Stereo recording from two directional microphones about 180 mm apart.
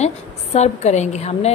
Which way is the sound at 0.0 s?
40° left (ahead or behind).